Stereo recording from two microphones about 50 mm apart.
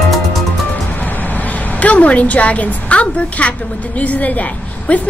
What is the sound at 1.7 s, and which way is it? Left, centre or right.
A woman's voice, left.